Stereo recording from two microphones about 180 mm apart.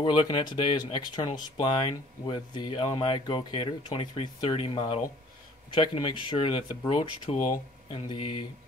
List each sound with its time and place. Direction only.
0.0 s speech: 25° left (ahead or behind)